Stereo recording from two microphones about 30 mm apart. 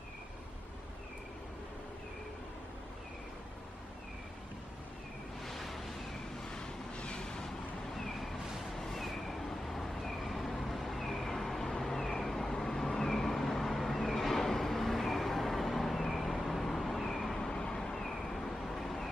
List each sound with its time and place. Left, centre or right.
5.4 s waves: centre
6.5 s vehicle: left
7.4 s cat: centre
8.7 s vehicle: centre
10.6 s cat: centre
12.6 s vehicle: centre
17.4 s vehicle: left; by 19.0 s centre